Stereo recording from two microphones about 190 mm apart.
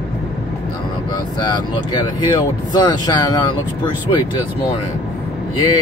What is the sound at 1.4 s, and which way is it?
Speech, 25° left (ahead or behind).